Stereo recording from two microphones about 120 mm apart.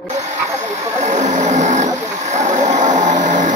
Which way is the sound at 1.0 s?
80° right.